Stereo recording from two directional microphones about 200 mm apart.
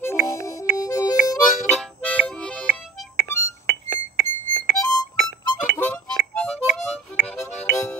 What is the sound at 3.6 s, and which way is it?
Music, 60° right (ahead or behind).